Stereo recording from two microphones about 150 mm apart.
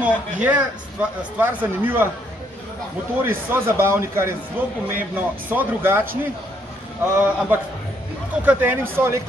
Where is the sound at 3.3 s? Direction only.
15° right (ahead or behind).